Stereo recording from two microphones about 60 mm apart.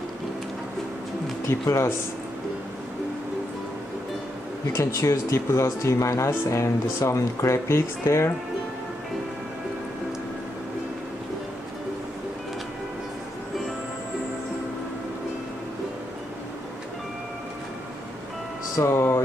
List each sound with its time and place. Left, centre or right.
1.4 s speech: left
4.7 s speech: left
18.8 s music: left